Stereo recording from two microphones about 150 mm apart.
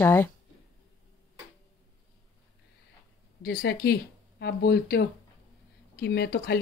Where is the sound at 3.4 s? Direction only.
90° left.